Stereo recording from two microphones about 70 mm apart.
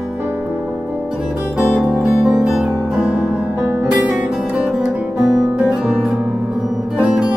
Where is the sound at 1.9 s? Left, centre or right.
Centre.